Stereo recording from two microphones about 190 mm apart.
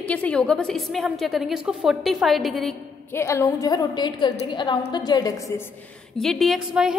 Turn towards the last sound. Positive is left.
turn(degrees=-5)  # may be behind; listen again after turning